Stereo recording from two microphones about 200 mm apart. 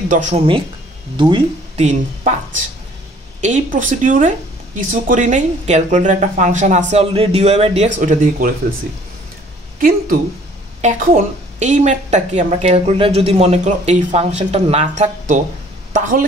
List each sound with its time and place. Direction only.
0.1 s speech: 40° right (ahead or behind)
1.1 s speech: 25° right (ahead or behind); by 8.5 s 40° right (ahead or behind)
9.8 s speech: 45° right (ahead or behind)
11.6 s a woman's voice: 35° right (ahead or behind)